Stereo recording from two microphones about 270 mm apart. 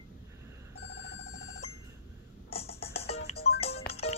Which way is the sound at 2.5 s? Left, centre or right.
Left.